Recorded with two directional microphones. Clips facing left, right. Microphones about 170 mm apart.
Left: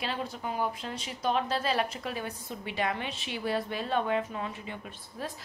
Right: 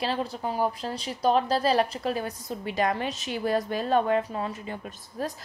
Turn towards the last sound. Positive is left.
turn(degrees=-40)  # may be behind; listen again after turning